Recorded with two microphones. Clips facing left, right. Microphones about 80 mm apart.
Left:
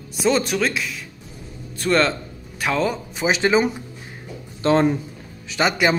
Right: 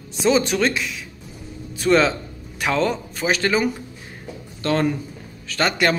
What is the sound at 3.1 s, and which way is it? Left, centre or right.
Speech, centre.